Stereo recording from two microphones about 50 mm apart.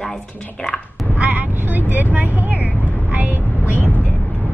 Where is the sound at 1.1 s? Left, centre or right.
Right.